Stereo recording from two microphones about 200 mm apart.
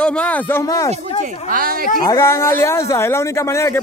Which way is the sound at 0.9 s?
40° right (ahead or behind).